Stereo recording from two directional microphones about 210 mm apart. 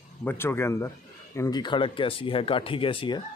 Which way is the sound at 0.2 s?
10° left (ahead or behind).